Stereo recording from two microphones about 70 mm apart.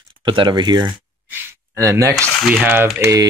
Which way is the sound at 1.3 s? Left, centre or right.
Right.